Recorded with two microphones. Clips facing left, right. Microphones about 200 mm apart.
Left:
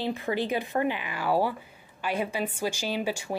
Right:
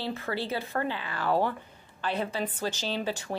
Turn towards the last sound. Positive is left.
turn(degrees=10)  # may be behind; listen again after turning